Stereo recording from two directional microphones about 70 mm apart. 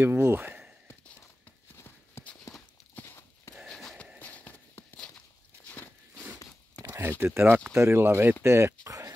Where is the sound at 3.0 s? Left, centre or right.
Left.